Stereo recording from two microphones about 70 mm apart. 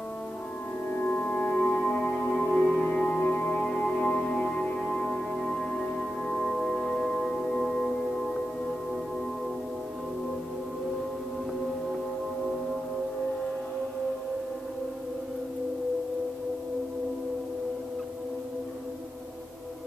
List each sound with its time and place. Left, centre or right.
0.9 s music: left
2.1 s music: centre
2.9 s music: centre